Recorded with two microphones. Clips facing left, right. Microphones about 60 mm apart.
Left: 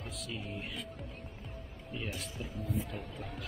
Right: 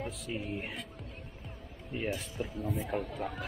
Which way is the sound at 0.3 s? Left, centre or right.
Right.